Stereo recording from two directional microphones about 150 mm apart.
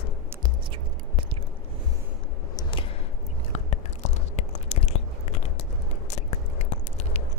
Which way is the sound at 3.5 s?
50° left (ahead or behind).